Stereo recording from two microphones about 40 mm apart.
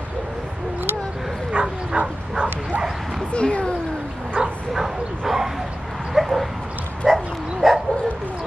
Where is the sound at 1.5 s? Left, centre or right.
Centre.